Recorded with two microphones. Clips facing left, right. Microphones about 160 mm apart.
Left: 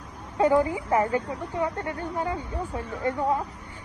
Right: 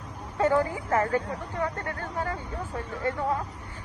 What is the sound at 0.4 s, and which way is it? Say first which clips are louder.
Speech: left 3 dB; 15° left (ahead or behind).